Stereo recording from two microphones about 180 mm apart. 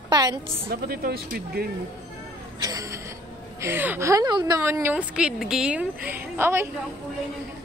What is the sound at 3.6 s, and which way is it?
A woman's voice, 10° right (ahead or behind).